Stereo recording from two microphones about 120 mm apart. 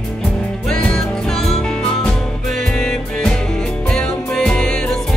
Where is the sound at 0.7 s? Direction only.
5° left (ahead or behind).